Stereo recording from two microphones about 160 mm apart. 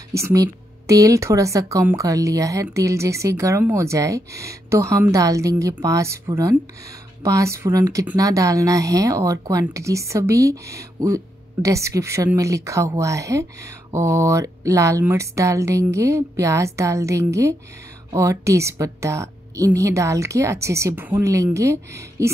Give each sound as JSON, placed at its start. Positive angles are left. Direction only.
{"t": 0.1, "sound": "a woman's voice", "side_deg": -20}